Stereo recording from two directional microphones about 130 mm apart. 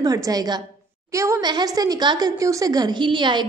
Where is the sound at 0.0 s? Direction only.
30° right (ahead or behind).